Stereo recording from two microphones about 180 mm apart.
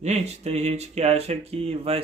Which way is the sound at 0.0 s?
40° right (ahead or behind).